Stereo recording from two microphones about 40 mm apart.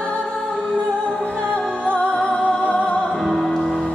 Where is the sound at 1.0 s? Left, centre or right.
Left.